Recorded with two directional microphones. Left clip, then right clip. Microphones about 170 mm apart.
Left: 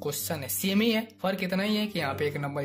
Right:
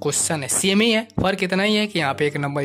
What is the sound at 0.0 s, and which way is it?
Speech, 40° right (ahead or behind).